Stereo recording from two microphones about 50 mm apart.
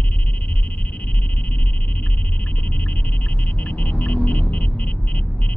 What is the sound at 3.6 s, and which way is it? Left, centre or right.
Vehicle, left.